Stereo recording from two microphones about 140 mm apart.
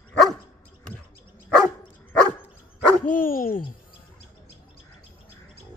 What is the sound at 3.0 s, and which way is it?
Dog, 85° left.